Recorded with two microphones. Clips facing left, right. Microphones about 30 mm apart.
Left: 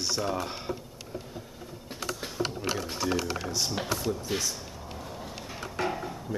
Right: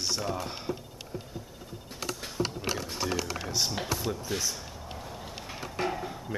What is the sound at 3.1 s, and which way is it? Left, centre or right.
Speech, centre.